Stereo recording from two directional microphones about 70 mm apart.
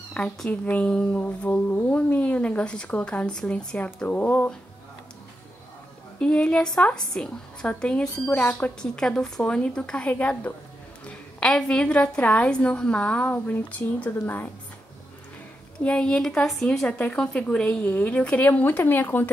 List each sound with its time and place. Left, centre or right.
0.2 s a woman's voice: centre
6.1 s a woman's voice: centre
8.8 s a woman's voice: centre; by 14.5 s left
15.8 s a woman's voice: centre
17.3 s speech: centre; by 19.3 s left